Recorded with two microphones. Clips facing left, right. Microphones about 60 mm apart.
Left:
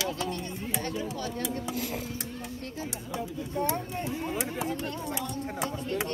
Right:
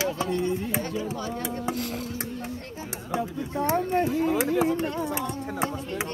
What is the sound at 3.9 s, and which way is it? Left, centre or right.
Speech, right.